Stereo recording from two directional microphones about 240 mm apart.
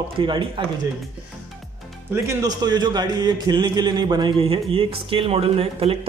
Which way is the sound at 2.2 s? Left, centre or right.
Centre.